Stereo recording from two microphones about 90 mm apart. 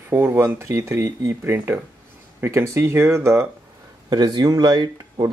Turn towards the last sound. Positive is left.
turn(degrees=-50)  # may be behind; listen again after turning